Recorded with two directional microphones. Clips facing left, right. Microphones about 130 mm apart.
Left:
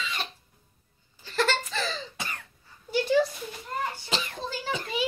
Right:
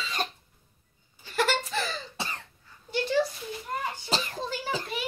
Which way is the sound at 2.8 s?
Centre (ahead or behind).